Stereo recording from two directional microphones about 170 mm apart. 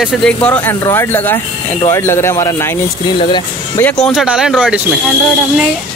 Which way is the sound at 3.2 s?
30° left (ahead or behind).